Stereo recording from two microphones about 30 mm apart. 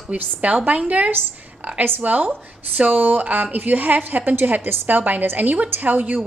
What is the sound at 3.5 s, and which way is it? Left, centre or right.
A woman's voice, right.